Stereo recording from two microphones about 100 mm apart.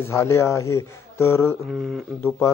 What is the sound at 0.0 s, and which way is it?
Speech, 25° left (ahead or behind).